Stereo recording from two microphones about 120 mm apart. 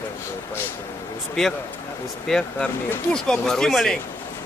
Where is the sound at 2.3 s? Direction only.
5° left (ahead or behind).